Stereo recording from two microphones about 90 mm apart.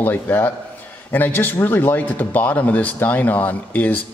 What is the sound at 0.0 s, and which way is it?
A man's voice, 20° left (ahead or behind).